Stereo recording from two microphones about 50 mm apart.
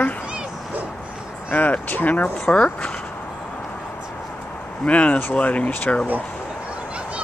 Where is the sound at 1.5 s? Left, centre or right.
Left.